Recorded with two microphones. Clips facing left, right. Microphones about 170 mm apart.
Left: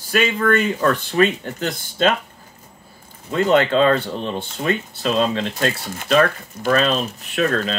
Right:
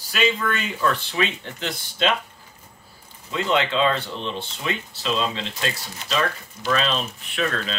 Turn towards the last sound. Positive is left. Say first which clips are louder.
# left 6 dB
turn(degrees=40)  # may be behind; listen again after turning